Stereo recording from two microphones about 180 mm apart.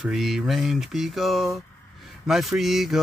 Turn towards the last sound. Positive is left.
turn(degrees=0)  # may be behind; listen again after turning